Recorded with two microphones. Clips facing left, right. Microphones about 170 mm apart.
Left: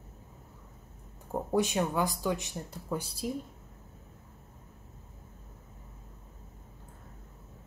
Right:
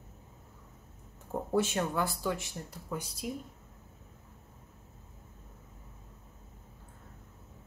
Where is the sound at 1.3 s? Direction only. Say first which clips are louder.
Left 1 dB; 15° left (ahead or behind).